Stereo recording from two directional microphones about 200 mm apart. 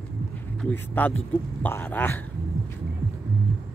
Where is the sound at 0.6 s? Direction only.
10° left (ahead or behind).